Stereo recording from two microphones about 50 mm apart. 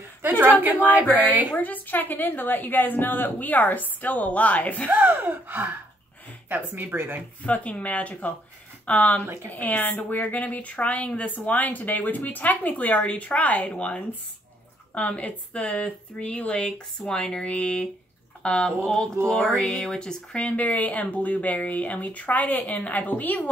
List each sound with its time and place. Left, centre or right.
0.2 s a woman's voice: right
1.6 s speech: left
4.8 s a woman's voice: right
7.4 s speech: left
19.2 s speech: centre
20.4 s speech: left